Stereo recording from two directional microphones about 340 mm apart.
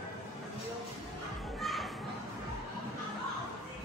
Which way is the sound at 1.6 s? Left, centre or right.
Centre.